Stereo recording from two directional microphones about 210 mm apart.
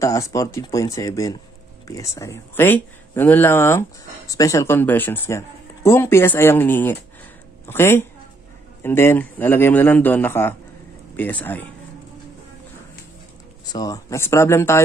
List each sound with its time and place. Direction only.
0.0 s speech: 15° left (ahead or behind)
13.7 s speech: 20° left (ahead or behind)